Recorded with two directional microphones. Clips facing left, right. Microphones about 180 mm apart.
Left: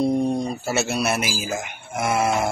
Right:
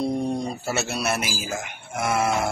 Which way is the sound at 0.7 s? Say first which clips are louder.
Left 3 dB; centre (ahead or behind).